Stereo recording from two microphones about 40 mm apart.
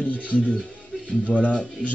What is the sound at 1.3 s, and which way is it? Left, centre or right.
Speech, left.